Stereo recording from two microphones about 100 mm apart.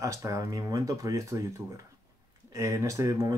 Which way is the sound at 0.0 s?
30° right (ahead or behind).